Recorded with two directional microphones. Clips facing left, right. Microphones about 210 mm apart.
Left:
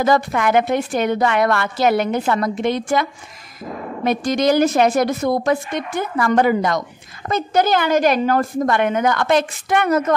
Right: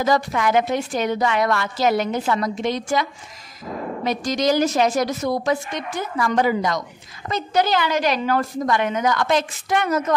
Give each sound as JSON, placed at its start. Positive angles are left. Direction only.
{"t": 0.0, "sound": "a woman's voice", "side_deg": 55}